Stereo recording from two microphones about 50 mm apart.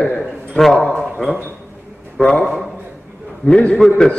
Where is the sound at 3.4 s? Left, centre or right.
Left.